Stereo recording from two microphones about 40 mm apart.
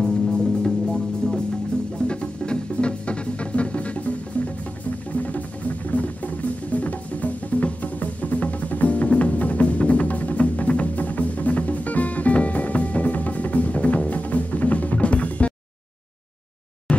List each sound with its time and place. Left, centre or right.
0.0 s music: centre; by 4.1 s left
5.1 s music: left